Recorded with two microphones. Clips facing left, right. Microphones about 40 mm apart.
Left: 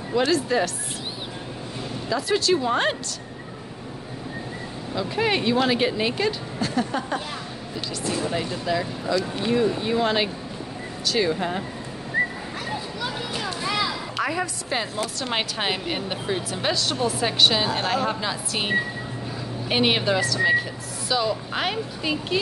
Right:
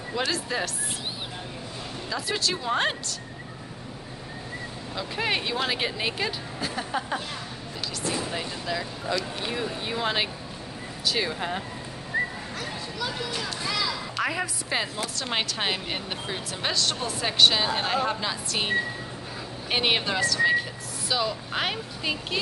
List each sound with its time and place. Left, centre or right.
0.3 s a woman's voice: centre
2.0 s a woman's voice: centre
4.9 s a woman's voice: centre
12.6 s children playing: centre
13.7 s a sound: centre
14.2 s a woman's voice: centre